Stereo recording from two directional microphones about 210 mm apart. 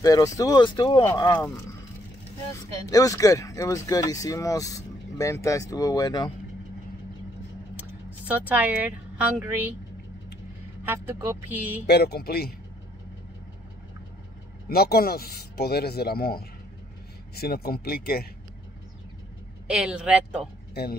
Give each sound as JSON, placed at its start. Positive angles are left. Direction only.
{"t": 0.0, "sound": "speech", "side_deg": 15}
{"t": 2.9, "sound": "speech", "side_deg": 15}
{"t": 8.3, "sound": "a woman's voice", "side_deg": -5}
{"t": 10.8, "sound": "a woman's voice", "side_deg": -10}
{"t": 11.8, "sound": "speech", "side_deg": 50}
{"t": 14.7, "sound": "speech", "side_deg": 45}
{"t": 19.7, "sound": "speech", "side_deg": -5}